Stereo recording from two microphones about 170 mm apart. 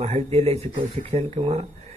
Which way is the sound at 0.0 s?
35° right (ahead or behind).